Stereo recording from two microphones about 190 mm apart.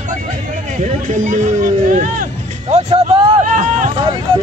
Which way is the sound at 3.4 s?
40° right (ahead or behind).